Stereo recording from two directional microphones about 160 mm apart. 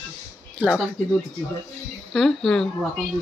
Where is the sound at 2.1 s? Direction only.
5° left (ahead or behind).